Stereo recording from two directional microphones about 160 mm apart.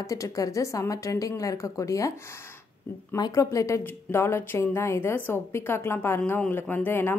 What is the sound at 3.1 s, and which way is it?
A woman's voice, 20° left (ahead or behind).